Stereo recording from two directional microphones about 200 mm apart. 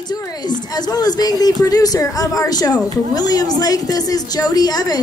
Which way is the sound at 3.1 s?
20° left (ahead or behind).